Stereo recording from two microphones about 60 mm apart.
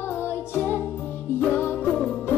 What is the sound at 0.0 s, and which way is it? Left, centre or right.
Music, left.